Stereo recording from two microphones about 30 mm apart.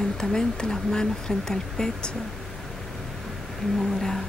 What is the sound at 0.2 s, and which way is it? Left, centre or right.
Speech, left.